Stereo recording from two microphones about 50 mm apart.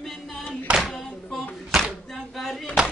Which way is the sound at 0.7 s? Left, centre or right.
Right.